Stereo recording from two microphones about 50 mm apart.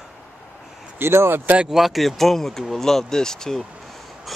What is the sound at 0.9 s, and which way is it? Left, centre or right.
Speech, right.